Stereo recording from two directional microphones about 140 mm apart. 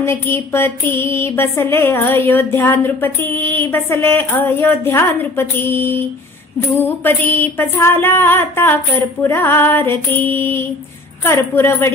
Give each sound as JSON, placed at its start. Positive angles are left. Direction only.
{"t": 0.0, "sound": "music", "side_deg": 15}